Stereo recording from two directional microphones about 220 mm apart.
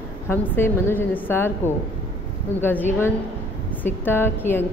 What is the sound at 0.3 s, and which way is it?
A woman's voice, 10° left (ahead or behind).